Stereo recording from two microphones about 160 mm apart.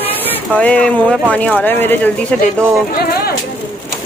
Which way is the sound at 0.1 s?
10° left (ahead or behind).